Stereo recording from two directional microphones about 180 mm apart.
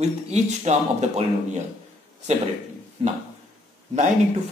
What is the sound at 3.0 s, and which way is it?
Speech, 30° right (ahead or behind).